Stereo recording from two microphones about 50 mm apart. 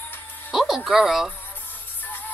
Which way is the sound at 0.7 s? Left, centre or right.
Centre.